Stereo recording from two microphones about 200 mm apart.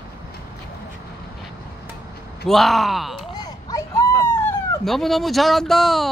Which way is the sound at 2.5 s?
Centre (ahead or behind).